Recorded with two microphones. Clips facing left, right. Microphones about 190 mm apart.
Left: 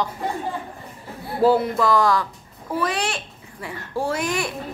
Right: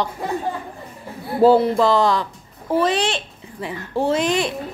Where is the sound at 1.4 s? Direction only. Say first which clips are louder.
Right 4 dB; 30° right (ahead or behind).